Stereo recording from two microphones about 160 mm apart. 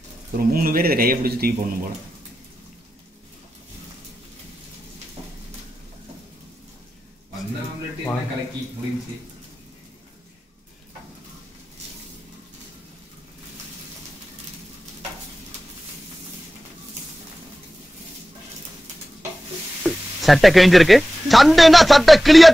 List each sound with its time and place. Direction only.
0.4 s a man's voice: 65° right (ahead or behind)
19.8 s speech: 5° right (ahead or behind)